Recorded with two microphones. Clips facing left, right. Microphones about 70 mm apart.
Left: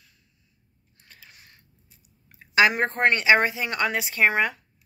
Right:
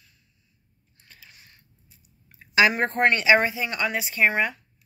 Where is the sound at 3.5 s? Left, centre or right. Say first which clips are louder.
Left 1 dB; left.